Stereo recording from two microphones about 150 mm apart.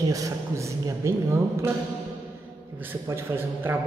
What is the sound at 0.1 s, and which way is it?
A woman's voice, 20° right (ahead or behind).